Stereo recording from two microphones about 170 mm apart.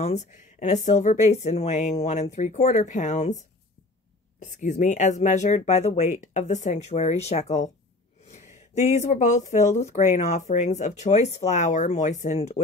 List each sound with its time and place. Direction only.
0.0 s speech: 40° left (ahead or behind)
4.4 s speech: 45° left (ahead or behind)